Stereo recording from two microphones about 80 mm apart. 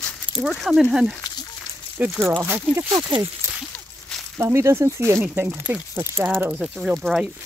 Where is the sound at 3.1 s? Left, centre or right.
Right.